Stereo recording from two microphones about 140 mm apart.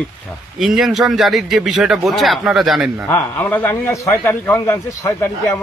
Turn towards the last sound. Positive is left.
turn(degrees=25)  # may be behind; listen again after turning